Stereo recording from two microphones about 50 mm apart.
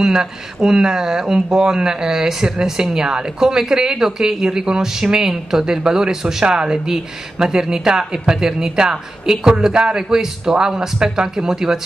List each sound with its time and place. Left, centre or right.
0.0 s speech: centre